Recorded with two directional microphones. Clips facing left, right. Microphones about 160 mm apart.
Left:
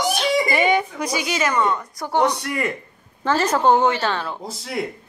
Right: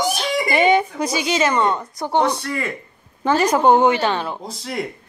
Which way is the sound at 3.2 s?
15° right (ahead or behind).